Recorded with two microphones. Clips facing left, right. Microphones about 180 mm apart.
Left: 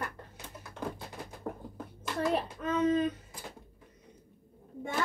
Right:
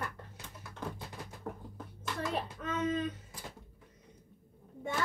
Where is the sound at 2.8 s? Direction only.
55° left (ahead or behind).